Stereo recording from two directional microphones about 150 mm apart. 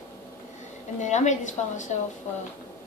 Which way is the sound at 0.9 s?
50° left (ahead or behind).